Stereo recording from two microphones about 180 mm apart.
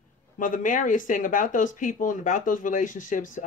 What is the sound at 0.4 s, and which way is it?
Speech, 45° left (ahead or behind).